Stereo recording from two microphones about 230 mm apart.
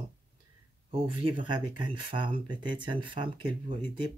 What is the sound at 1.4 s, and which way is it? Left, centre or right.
Speech, centre.